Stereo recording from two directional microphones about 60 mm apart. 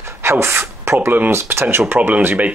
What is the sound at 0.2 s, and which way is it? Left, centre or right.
Speech, right.